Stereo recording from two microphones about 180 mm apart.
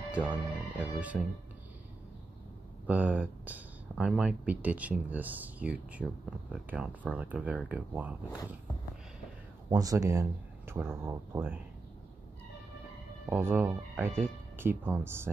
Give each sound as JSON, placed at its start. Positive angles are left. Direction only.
{"t": 0.1, "sound": "speech", "side_deg": -10}
{"t": 2.9, "sound": "speech", "side_deg": -10}
{"t": 9.7, "sound": "speech", "side_deg": -20}
{"t": 13.3, "sound": "speech", "side_deg": -10}